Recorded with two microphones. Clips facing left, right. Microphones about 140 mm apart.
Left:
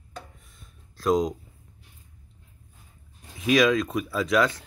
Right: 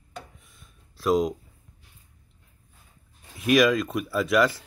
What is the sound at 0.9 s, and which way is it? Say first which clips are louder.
Speech: even; centre (ahead or behind).